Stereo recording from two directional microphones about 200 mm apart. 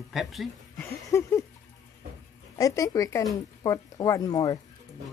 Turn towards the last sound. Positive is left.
turn(degrees=20)  # may be behind; listen again after turning